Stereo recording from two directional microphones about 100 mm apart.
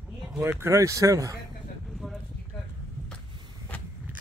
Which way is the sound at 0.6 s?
30° right (ahead or behind).